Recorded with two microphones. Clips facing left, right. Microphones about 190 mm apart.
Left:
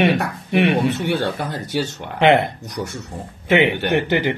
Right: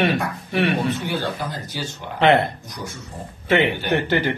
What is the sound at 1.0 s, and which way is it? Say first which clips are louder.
Speech: left 4 dB; 65° left (ahead or behind).